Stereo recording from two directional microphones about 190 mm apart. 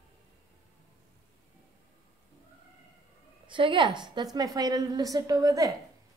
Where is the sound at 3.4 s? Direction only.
25° right (ahead or behind).